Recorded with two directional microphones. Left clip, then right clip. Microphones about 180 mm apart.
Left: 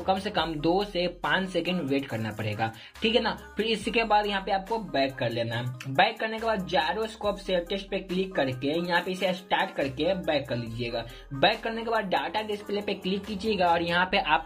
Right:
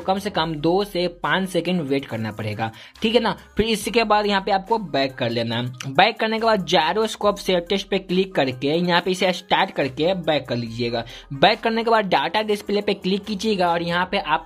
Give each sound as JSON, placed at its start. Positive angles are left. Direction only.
{"t": 0.0, "sound": "speech", "side_deg": -20}